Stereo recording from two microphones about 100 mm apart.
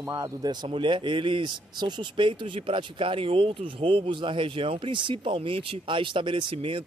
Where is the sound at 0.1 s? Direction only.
40° right (ahead or behind).